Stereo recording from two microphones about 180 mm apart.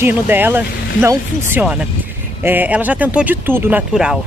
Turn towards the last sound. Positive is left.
turn(degrees=-5)  # may be behind; listen again after turning